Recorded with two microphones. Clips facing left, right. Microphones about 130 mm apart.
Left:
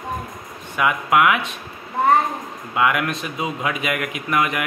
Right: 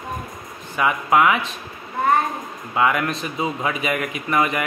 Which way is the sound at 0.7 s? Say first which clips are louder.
Even; centre (ahead or behind).